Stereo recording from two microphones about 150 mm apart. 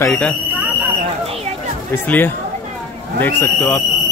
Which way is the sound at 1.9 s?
10° left (ahead or behind).